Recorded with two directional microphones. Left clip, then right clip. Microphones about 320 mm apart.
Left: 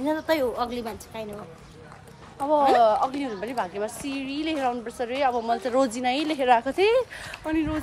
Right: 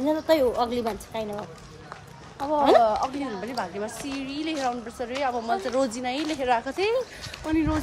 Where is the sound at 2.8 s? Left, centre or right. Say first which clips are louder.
Left 1 dB; left.